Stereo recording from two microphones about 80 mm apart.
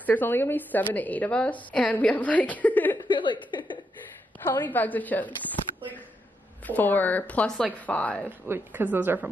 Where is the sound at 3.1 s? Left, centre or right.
Left.